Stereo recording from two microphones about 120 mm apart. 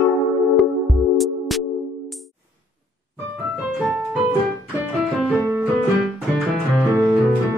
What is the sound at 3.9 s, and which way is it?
Music, 10° right (ahead or behind).